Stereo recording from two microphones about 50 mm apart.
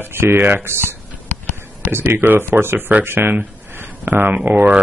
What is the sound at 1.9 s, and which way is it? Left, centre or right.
Speech, right.